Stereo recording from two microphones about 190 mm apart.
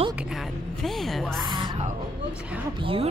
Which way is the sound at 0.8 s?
Centre (ahead or behind).